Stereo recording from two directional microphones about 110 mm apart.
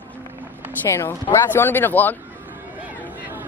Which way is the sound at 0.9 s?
25° left (ahead or behind).